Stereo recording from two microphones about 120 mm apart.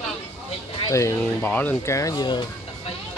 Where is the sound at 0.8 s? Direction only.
25° left (ahead or behind).